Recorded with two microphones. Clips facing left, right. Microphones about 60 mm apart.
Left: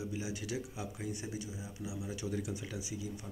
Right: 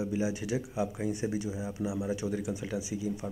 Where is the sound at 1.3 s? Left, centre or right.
Right.